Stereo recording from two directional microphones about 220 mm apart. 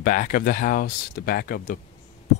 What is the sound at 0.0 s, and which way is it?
Speech, 35° left (ahead or behind).